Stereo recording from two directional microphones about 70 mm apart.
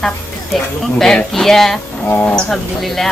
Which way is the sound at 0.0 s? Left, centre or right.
Centre.